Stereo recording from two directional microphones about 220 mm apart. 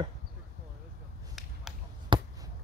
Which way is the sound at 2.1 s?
20° right (ahead or behind).